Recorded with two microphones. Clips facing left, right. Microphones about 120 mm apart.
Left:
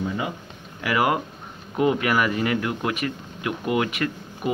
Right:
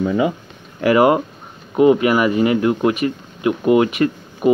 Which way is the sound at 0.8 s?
30° right (ahead or behind).